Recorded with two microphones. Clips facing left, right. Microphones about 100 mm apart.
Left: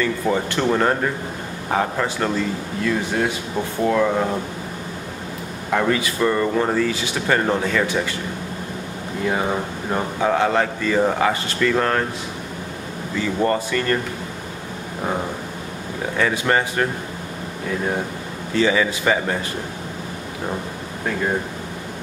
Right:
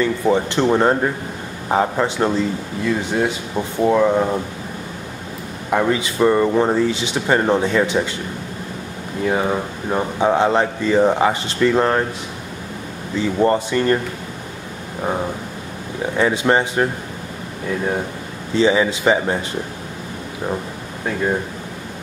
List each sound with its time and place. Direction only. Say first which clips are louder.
0.0 s speech: right 4 dB; 25° right (ahead or behind)
5.7 s speech: right 2 dB; 15° right (ahead or behind)
9.3 s speech: right 3 dB; 10° right (ahead or behind)
10.2 s speech: right 3 dB; 25° right (ahead or behind)
13.2 s speech: right 4 dB; 20° right (ahead or behind)
16.2 s speech: right 3 dB; 25° right (ahead or behind)
18.5 s speech: right 3 dB; 25° right (ahead or behind)